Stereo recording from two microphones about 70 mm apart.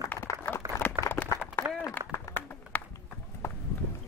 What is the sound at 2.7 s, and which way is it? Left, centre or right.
Bird, left.